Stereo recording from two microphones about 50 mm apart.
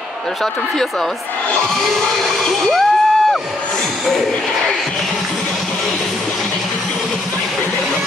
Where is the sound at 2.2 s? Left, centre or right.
Centre.